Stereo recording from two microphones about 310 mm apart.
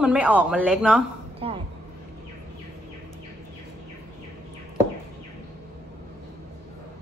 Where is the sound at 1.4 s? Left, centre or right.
Centre.